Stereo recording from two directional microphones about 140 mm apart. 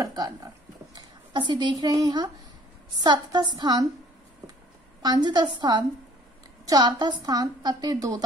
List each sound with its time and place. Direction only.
0.0 s a woman's voice: 25° right (ahead or behind)
5.0 s a woman's voice: 30° right (ahead or behind)